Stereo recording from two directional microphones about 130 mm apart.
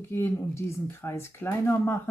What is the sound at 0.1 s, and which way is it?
Speech, 20° left (ahead or behind).